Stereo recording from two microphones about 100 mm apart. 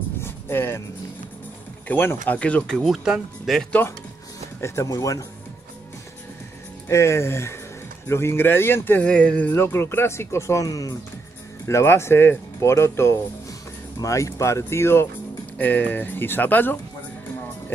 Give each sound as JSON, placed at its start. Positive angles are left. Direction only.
{"t": 0.2, "sound": "music", "side_deg": 25}
{"t": 1.9, "sound": "speech", "side_deg": 20}
{"t": 4.6, "sound": "speech", "side_deg": 25}
{"t": 6.9, "sound": "speech", "side_deg": 30}